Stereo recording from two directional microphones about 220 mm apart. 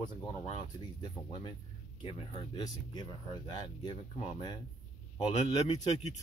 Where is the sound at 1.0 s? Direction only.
20° left (ahead or behind).